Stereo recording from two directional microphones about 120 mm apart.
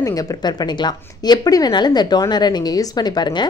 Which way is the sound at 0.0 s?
30° left (ahead or behind).